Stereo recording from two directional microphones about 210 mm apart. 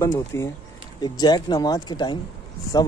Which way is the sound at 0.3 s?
15° left (ahead or behind).